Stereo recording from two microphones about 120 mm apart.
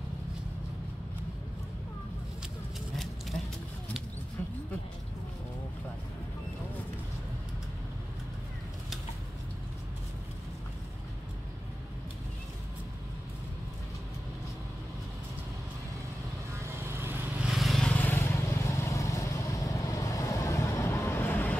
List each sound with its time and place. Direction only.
3.0 s a sound: centre (ahead or behind)
16.5 s vehicle: 20° right (ahead or behind)
17.5 s vehicle: centre (ahead or behind)
17.9 s vehicle: 15° left (ahead or behind)